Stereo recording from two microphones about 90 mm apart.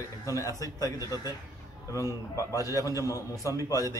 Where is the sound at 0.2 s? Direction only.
40° left (ahead or behind).